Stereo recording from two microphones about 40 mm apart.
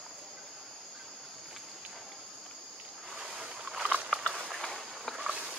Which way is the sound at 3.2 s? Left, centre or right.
Centre.